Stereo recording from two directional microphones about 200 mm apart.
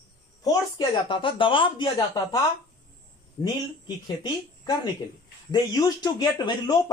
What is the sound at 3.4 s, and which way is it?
A man's voice, 20° left (ahead or behind).